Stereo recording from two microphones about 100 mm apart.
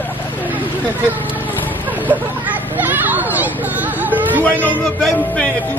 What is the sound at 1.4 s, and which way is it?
Vehicle, 20° left (ahead or behind).